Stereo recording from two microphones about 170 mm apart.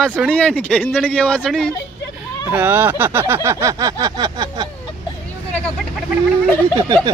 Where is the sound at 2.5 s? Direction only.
10° right (ahead or behind).